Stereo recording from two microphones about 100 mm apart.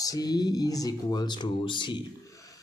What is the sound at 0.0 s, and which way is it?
Speech, 40° left (ahead or behind).